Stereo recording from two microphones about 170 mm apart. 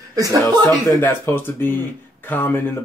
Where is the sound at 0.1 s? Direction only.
20° right (ahead or behind).